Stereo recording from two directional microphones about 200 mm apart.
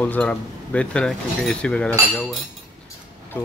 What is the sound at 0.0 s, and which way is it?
Speech, 5° left (ahead or behind).